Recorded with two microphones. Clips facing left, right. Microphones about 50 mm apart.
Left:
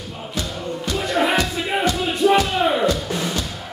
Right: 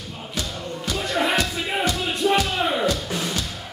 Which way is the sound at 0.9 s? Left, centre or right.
Centre.